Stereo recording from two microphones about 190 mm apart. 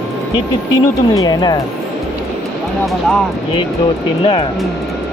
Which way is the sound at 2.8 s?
Centre (ahead or behind).